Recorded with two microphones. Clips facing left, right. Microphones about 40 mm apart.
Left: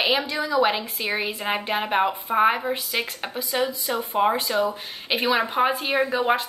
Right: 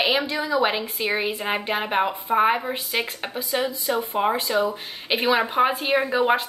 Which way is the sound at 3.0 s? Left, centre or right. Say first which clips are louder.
Right 1 dB; centre.